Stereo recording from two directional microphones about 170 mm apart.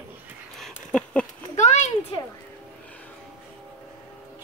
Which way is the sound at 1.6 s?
45° left (ahead or behind).